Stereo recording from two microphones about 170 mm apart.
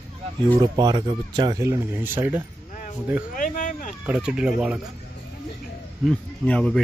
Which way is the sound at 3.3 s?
55° left (ahead or behind).